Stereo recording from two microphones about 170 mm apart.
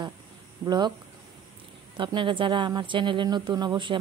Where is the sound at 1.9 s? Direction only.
30° right (ahead or behind).